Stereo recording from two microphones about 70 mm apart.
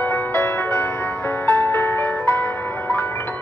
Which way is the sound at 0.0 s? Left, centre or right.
Left.